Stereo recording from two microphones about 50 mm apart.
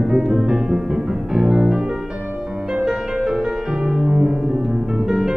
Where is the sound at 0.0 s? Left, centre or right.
Centre.